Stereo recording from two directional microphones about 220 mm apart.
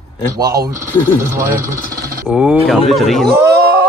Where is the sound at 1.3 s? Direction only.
10° right (ahead or behind).